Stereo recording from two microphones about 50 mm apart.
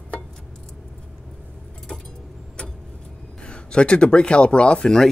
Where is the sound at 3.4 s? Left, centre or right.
Centre.